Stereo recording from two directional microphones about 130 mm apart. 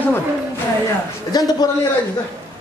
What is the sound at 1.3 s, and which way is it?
Speech, 30° left (ahead or behind).